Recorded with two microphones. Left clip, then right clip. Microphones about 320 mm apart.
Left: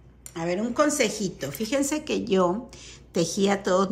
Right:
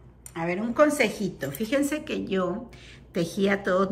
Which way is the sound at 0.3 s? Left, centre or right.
Centre.